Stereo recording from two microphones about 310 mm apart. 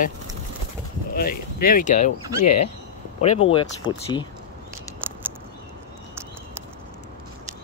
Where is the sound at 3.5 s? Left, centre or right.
Centre.